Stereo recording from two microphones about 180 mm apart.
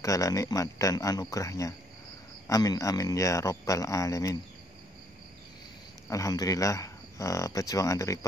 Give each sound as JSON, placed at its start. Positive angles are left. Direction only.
{"t": 0.0, "sound": "speech", "side_deg": 20}
{"t": 6.0, "sound": "speech", "side_deg": 20}